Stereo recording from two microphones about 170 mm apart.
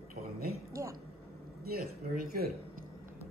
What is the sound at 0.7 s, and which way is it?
Speech, 20° right (ahead or behind).